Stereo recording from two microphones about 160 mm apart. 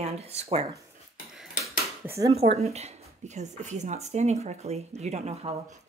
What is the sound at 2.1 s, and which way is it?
Speech, 20° right (ahead or behind).